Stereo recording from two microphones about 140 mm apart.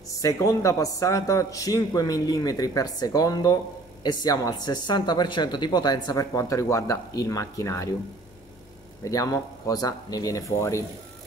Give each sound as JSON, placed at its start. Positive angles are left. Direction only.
{"t": 0.2, "sound": "speech", "side_deg": 25}
{"t": 9.0, "sound": "speech", "side_deg": 25}